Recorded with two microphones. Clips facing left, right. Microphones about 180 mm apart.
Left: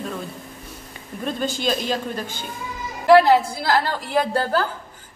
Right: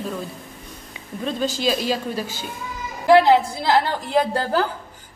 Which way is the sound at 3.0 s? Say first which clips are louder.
Even; 20° right (ahead or behind).